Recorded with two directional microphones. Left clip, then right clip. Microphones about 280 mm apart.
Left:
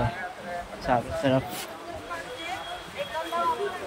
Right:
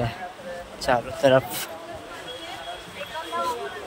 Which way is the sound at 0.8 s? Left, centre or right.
Centre.